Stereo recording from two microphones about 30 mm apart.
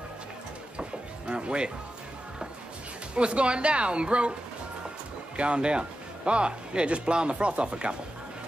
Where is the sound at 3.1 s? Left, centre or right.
Right.